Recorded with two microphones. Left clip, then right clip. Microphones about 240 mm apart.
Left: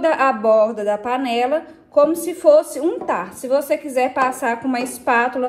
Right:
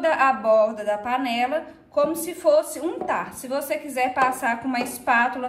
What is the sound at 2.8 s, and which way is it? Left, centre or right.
A woman's voice, centre.